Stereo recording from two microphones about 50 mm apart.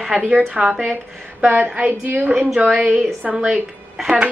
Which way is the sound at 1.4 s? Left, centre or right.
Right.